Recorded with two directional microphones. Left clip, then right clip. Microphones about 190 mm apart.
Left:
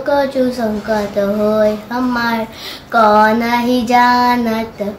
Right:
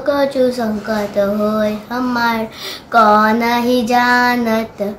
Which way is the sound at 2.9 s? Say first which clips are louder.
Left 1 dB; 20° right (ahead or behind).